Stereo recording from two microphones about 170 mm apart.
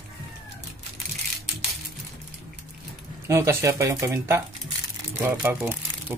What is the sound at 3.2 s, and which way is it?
Speech, 20° right (ahead or behind).